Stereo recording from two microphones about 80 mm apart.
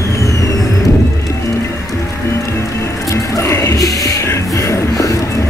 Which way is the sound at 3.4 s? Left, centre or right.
Left.